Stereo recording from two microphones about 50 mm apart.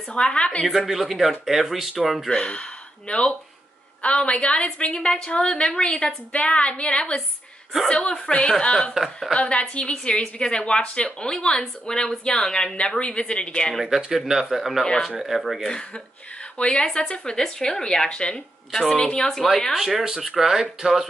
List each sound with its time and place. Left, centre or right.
0.1 s a woman's voice: left
0.7 s speech: centre
2.2 s a woman's voice: centre
8.3 s a woman's voice: left
8.9 s speech: centre
9.4 s a woman's voice: left
13.0 s a woman's voice: left
13.8 s speech: centre
15.6 s a woman's voice: centre
18.9 s a woman's voice: left
19.7 s speech: centre